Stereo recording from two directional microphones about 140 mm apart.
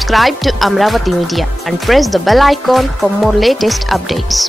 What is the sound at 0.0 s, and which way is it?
Speech, centre (ahead or behind).